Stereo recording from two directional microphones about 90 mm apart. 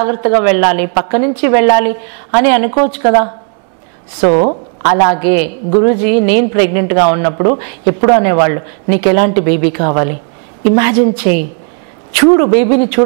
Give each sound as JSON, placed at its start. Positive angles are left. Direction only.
{"t": 0.0, "sound": "a woman's voice", "side_deg": -15}